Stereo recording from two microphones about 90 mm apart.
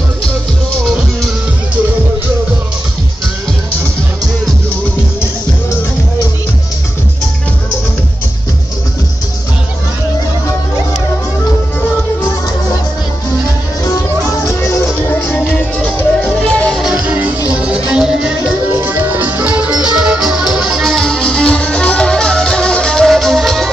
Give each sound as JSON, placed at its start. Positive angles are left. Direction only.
{"t": 0.8, "sound": "music", "side_deg": 0}
{"t": 14.4, "sound": "music", "side_deg": 35}
{"t": 16.8, "sound": "music", "side_deg": -5}
{"t": 18.8, "sound": "music", "side_deg": -25}